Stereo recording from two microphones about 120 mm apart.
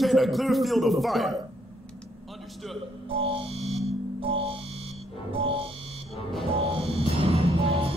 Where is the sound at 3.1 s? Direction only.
50° right (ahead or behind).